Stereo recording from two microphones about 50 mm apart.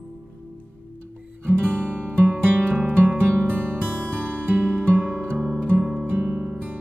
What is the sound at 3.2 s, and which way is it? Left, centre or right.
Music, right.